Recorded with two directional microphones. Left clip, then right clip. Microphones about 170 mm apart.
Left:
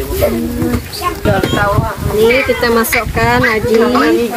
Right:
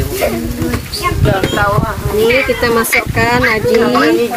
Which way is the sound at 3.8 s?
30° left (ahead or behind).